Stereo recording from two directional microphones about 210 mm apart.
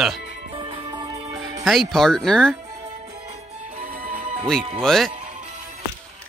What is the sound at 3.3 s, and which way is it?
Music, 40° right (ahead or behind).